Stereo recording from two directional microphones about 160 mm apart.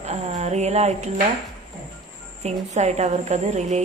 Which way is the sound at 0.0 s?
45° right (ahead or behind).